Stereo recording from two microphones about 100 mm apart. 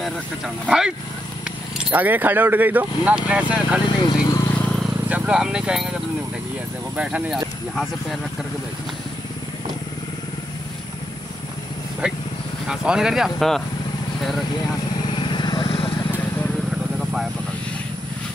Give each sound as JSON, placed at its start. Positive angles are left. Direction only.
{"t": 0.7, "sound": "speech", "side_deg": -5}
{"t": 1.9, "sound": "speech", "side_deg": -15}
{"t": 3.8, "sound": "speech", "side_deg": 45}
{"t": 5.0, "sound": "speech", "side_deg": -10}
{"t": 7.0, "sound": "speech", "side_deg": -10}
{"t": 12.0, "sound": "speech", "side_deg": -10}
{"t": 15.0, "sound": "vehicle", "side_deg": 55}